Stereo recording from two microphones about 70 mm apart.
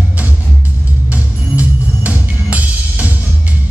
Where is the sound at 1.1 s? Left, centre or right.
Right.